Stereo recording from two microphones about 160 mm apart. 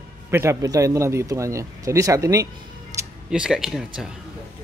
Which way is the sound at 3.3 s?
5° right (ahead or behind).